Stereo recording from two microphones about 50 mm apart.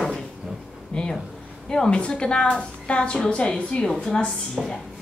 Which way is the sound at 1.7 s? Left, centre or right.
Centre.